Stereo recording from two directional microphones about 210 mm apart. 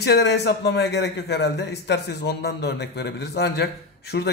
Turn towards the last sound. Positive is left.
turn(degrees=50)  # may be behind; listen again after turning